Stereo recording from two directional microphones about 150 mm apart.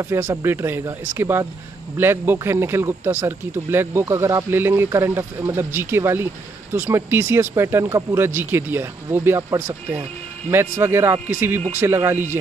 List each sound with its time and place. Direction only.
0.0 s speech: 20° right (ahead or behind)